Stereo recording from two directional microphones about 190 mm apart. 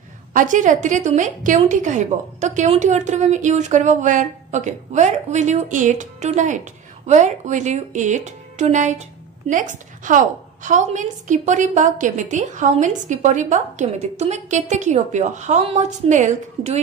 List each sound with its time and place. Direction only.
0.3 s a woman's voice: 45° right (ahead or behind)